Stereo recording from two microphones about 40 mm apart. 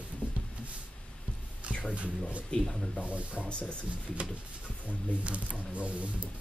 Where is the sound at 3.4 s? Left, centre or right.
Left.